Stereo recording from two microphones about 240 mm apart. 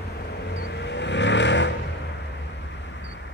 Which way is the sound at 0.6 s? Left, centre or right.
Left.